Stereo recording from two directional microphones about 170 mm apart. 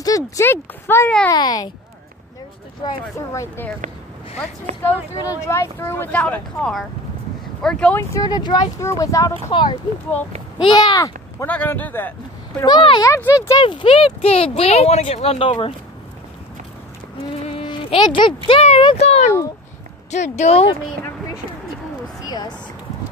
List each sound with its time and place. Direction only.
0.0 s speech: 20° left (ahead or behind)
1.3 s speech: 25° left (ahead or behind)
3.2 s speech: 15° left (ahead or behind)
5.2 s speech: 20° left (ahead or behind)
8.1 s speech: 25° left (ahead or behind)
11.4 s speech: 10° left (ahead or behind)
12.5 s speech: 25° left (ahead or behind)
13.6 s speech: 30° left (ahead or behind)
17.5 s a sound: 35° left (ahead or behind)
18.5 s speech: 40° left (ahead or behind)
22.3 s a sound: 25° left (ahead or behind)